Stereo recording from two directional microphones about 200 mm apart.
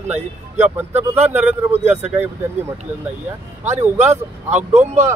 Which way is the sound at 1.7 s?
35° right (ahead or behind).